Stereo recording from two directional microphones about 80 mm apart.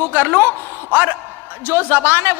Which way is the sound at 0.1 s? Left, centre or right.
Right.